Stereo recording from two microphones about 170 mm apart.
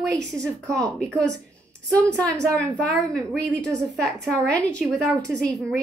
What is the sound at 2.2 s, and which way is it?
A woman's voice, 5° left (ahead or behind).